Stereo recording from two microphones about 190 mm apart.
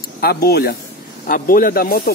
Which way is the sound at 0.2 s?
55° left (ahead or behind).